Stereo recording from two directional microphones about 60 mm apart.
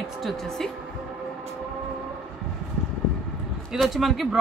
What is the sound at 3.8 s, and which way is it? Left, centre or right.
Speech, centre.